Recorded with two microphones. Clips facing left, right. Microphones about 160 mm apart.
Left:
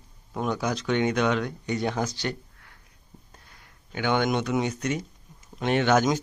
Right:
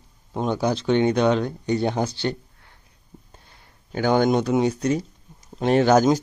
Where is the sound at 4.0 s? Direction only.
40° right (ahead or behind).